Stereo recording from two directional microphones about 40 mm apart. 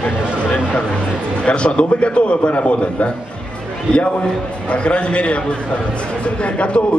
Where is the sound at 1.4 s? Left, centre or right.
Left.